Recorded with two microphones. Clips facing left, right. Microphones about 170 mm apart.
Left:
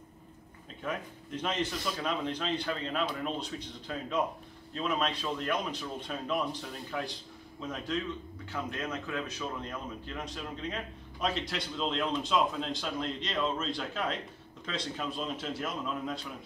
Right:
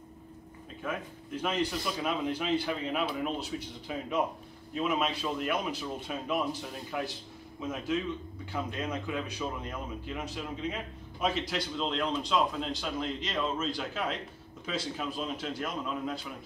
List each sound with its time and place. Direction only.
0.8 s speech: 10° right (ahead or behind)